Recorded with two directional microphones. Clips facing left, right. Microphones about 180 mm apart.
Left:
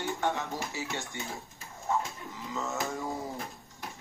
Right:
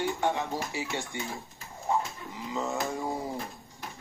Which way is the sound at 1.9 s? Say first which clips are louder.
Right 2 dB; 15° right (ahead or behind).